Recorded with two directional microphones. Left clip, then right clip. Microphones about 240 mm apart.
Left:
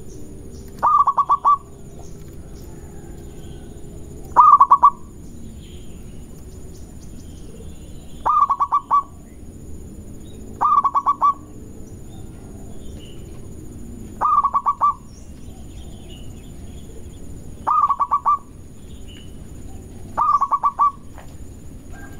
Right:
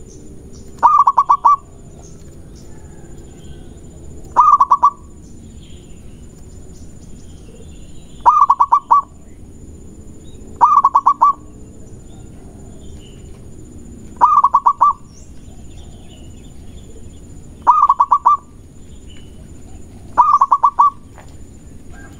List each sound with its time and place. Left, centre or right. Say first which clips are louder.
0.7 s bird: right 5 dB; centre
4.3 s owl: even; centre
8.2 s fowl: right 6 dB; centre
10.6 s owl: right 6 dB; centre
14.1 s fowl: right 6 dB; centre
17.6 s fowl: right 7 dB; centre
20.2 s bird: right 7 dB; centre